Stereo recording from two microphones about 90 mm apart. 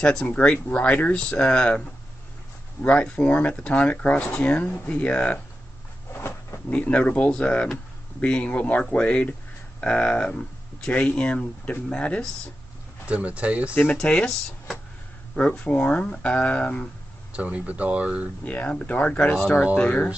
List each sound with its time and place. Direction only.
0.0 s speech: 10° left (ahead or behind)
6.1 s a sound: 30° left (ahead or behind)
6.7 s speech: 15° left (ahead or behind)
13.0 s speech: 15° right (ahead or behind)
13.9 s speech: 10° left (ahead or behind)
17.3 s speech: 15° right (ahead or behind)
18.4 s speech: 15° left (ahead or behind)
19.8 s speech: 20° left (ahead or behind)